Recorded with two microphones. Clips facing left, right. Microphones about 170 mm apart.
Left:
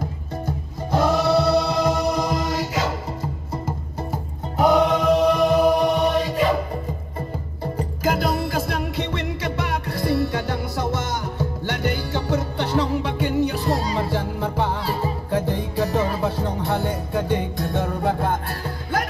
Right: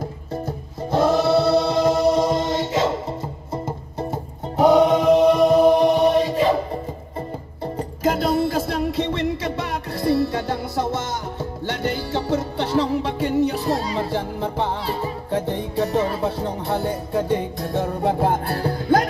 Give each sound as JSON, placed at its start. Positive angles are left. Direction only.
{"t": 0.5, "sound": "music", "side_deg": -25}
{"t": 5.2, "sound": "music", "side_deg": 0}
{"t": 5.5, "sound": "music", "side_deg": -25}